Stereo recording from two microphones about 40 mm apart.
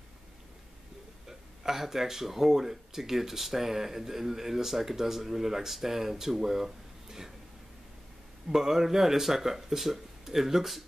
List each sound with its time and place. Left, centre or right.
1.6 s speech: centre
8.5 s speech: centre